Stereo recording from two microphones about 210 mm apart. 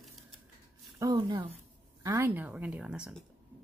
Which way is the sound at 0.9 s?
20° right (ahead or behind).